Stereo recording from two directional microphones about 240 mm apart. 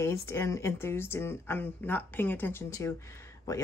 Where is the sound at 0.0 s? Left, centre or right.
Centre.